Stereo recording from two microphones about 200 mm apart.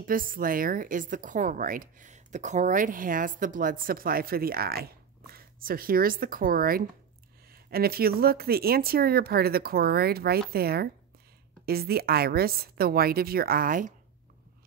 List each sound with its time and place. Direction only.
0.0 s speech: 45° right (ahead or behind)